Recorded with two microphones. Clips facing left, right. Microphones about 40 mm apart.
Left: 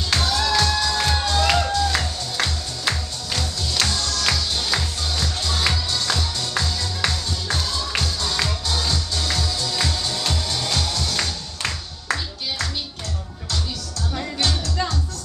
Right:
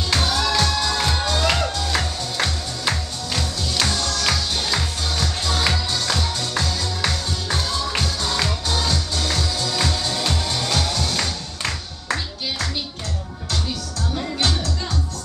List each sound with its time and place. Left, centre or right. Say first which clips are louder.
0.1 s music: even; centre
11.6 s music: left 1 dB; centre
14.4 s music: right 1 dB; centre